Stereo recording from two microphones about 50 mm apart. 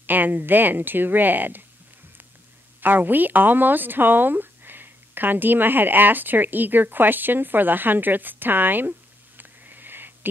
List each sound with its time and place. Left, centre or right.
0.0 s speech: right
2.8 s speech: right
9.4 s sniff: right